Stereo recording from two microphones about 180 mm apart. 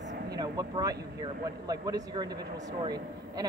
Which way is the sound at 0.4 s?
20° right (ahead or behind).